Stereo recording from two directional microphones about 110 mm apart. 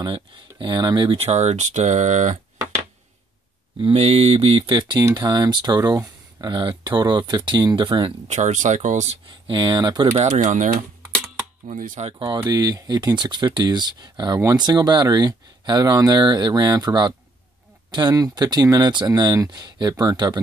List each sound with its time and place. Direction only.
0.0 s speech: 50° right (ahead or behind); by 2.4 s 90° right
3.8 s speech: 70° right (ahead or behind); by 8.1 s 50° right (ahead or behind)
8.3 s speech: 90° right
9.3 s speech: 45° right (ahead or behind)
10.1 s speech: 80° right
11.6 s speech: 80° right
12.4 s speech: 35° right (ahead or behind)